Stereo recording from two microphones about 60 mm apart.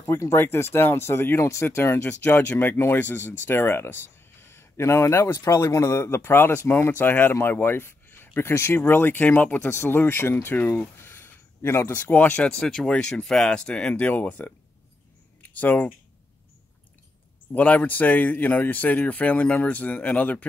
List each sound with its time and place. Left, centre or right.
0.4 s speech: left
2.2 s speech: left
2.7 s speech: left
3.0 s speech: left
7.6 s a sound: left
8.4 s speech: left
9.6 s speech: left
11.9 s speech: left
15.5 s speech: left
17.5 s speech: left